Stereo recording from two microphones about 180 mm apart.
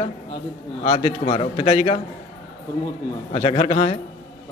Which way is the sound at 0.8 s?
30° left (ahead or behind).